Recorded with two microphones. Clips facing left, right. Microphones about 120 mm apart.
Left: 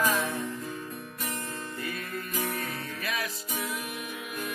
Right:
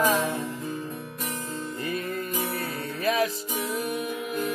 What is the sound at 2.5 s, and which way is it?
Music, 30° right (ahead or behind).